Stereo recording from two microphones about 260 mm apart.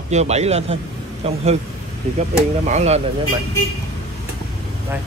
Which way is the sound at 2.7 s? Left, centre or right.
Right.